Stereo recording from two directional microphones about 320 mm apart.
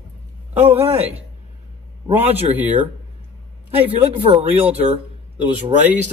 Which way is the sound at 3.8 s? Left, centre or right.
Centre.